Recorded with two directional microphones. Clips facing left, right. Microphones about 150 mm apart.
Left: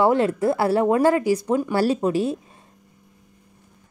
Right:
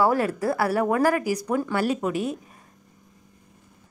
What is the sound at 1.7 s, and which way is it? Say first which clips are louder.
Speech: left 4 dB; 30° left (ahead or behind).